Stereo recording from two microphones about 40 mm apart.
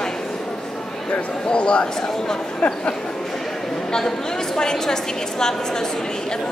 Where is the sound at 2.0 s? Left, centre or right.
Centre.